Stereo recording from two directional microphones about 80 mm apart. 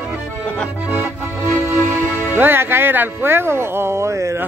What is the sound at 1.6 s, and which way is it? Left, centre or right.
Speech, right.